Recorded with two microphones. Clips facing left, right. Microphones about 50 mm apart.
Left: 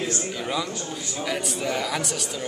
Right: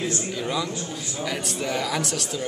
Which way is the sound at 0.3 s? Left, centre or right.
Centre.